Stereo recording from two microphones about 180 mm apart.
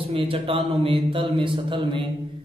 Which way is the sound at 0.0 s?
30° right (ahead or behind).